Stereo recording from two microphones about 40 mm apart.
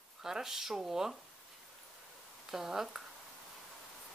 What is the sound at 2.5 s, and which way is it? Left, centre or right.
Speech, centre.